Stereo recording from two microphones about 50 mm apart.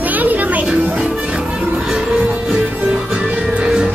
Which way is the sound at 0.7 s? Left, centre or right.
Centre.